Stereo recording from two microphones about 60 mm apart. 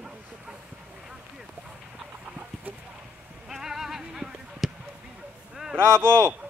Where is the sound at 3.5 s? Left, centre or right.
Centre.